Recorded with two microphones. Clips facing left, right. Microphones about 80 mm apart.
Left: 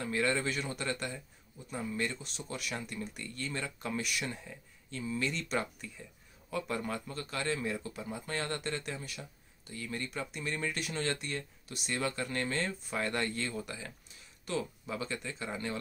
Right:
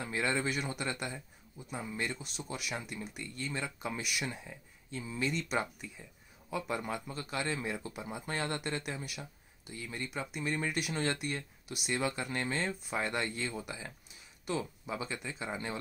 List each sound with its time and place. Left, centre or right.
0.0 s speech: centre